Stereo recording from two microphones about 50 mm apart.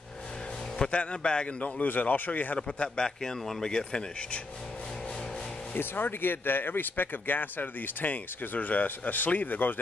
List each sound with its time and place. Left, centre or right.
0.8 s speech: left
3.2 s speech: centre
5.8 s speech: left